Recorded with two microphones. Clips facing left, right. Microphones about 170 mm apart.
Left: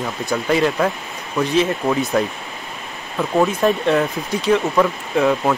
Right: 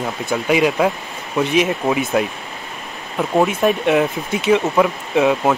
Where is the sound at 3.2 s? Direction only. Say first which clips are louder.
Right 1 dB; 15° right (ahead or behind).